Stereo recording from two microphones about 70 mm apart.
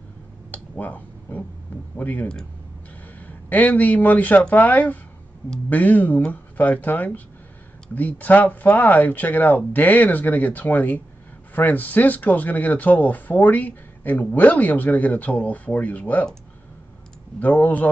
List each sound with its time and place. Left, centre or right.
0.5 s a sound: left
2.0 s speech: left
17.4 s speech: left